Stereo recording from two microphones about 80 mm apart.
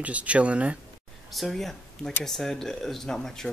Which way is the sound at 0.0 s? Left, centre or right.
Centre.